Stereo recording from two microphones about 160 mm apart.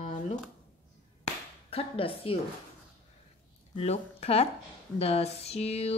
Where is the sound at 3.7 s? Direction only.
40° left (ahead or behind).